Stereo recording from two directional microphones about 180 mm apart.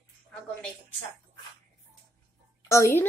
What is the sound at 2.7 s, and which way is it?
Music, 15° left (ahead or behind).